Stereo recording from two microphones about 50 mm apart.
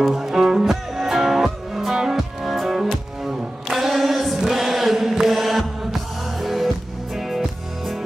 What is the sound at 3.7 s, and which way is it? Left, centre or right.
Chant, centre.